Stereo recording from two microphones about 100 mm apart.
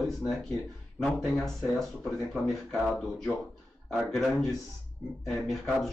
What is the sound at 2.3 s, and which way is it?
Speech, centre (ahead or behind).